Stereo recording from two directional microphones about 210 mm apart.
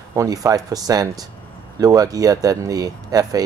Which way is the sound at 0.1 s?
15° right (ahead or behind).